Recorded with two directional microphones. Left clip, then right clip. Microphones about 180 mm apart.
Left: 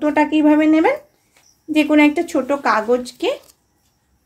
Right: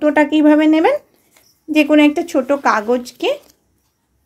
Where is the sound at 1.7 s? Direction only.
35° right (ahead or behind).